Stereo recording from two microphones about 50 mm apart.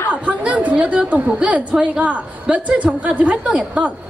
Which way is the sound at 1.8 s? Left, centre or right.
Right.